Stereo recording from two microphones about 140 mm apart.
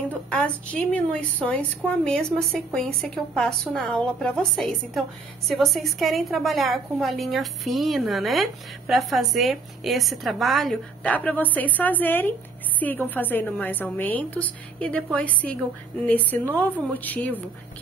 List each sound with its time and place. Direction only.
0.1 s a woman's voice: 10° left (ahead or behind)